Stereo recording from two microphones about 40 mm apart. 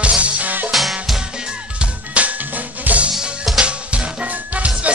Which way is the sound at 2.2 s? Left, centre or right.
Right.